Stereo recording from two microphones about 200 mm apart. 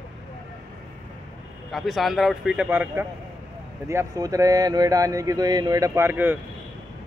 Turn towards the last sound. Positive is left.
turn(degrees=-10)  # may be behind; listen again after turning